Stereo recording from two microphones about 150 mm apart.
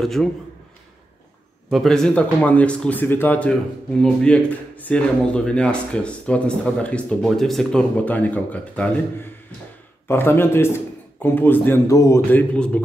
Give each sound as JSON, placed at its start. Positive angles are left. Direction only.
{"t": 0.0, "sound": "a man's voice", "side_deg": 0}
{"t": 1.7, "sound": "speech", "side_deg": 0}
{"t": 12.3, "sound": "speech", "side_deg": 10}